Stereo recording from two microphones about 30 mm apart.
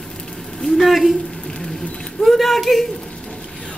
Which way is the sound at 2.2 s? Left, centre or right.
Centre.